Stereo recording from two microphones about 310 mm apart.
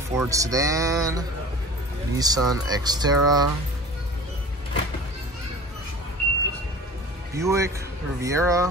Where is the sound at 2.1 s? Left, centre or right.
Centre.